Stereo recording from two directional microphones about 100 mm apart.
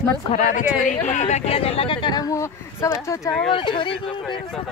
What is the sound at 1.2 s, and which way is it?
Speech, 90° left.